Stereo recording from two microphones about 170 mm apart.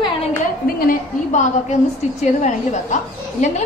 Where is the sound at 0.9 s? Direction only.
45° left (ahead or behind).